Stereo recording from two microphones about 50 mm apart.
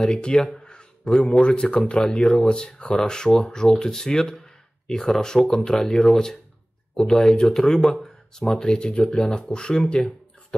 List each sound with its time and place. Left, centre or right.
0.0 s speech: centre